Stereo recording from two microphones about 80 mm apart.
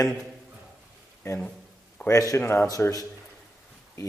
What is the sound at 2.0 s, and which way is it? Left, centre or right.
Speech, left.